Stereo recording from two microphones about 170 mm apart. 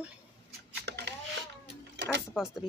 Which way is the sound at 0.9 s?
75° right (ahead or behind).